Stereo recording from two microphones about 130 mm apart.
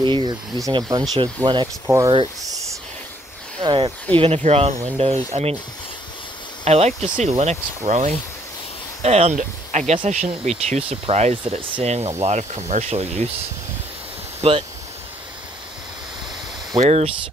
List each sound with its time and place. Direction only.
0.0 s snake: 40° right (ahead or behind)
0.6 s speech: 30° right (ahead or behind)
3.6 s speech: 40° right (ahead or behind)
4.2 s speech: 50° right (ahead or behind)
6.6 s speech: 55° right (ahead or behind)
14.4 s speech: 50° right (ahead or behind)
16.7 s speech: 50° right (ahead or behind)